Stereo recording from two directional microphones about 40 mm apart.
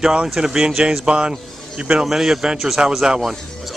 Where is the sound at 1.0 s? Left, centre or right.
Right.